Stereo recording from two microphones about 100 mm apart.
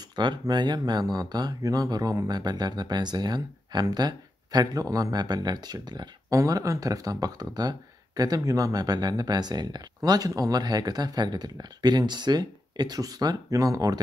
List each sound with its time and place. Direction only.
0.1 s speech: 50° right (ahead or behind)